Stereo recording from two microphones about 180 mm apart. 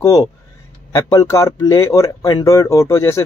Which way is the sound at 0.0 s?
20° left (ahead or behind).